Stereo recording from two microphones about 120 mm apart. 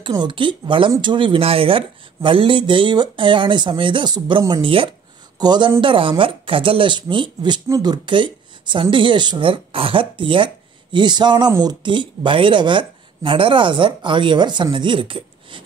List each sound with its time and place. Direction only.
0.0 s speech: 40° right (ahead or behind)